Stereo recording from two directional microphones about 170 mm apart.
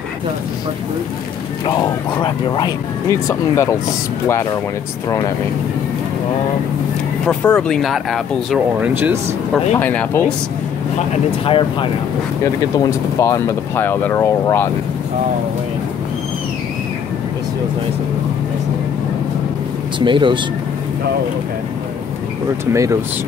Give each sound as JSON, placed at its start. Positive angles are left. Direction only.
{"t": 1.8, "sound": "speech", "side_deg": 25}
{"t": 7.2, "sound": "speech", "side_deg": 5}
{"t": 8.8, "sound": "speech", "side_deg": -10}
{"t": 9.8, "sound": "speech", "side_deg": 10}
{"t": 11.4, "sound": "speech", "side_deg": 30}
{"t": 12.7, "sound": "speech", "side_deg": 20}
{"t": 20.0, "sound": "speech", "side_deg": -30}
{"t": 22.7, "sound": "speech", "side_deg": -20}